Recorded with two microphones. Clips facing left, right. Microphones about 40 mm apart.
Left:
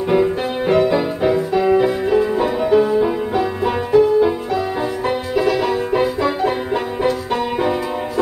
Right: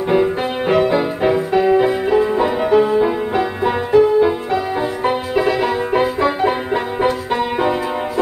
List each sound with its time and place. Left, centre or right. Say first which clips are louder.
0.1 s music: even; right